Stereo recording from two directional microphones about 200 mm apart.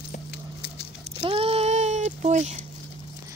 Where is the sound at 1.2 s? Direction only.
30° right (ahead or behind).